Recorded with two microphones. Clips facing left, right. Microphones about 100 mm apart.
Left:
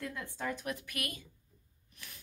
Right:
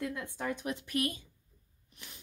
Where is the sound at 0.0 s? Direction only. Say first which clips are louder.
Right 3 dB; 15° right (ahead or behind).